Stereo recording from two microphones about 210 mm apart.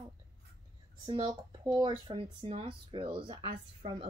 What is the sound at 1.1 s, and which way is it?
Speech, 20° right (ahead or behind).